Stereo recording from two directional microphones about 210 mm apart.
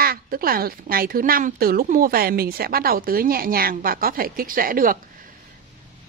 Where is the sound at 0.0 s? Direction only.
45° right (ahead or behind).